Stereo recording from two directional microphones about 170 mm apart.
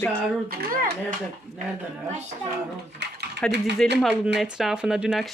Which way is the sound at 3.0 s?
85° right.